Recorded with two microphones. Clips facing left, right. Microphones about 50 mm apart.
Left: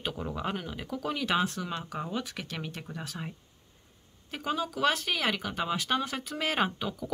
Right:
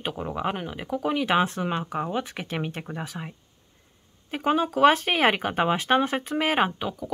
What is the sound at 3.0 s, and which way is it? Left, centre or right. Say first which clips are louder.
Speech: right 4 dB; centre.